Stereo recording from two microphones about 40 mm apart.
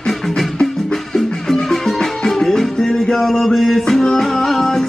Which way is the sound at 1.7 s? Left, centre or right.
Centre.